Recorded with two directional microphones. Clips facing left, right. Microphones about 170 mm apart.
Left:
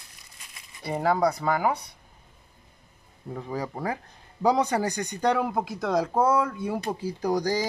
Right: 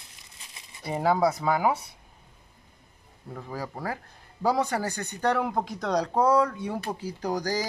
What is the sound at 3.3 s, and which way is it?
Speech, 20° left (ahead or behind).